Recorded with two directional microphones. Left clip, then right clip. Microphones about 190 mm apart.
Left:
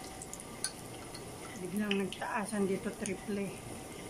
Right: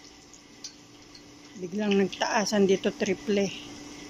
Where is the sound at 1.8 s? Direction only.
35° right (ahead or behind).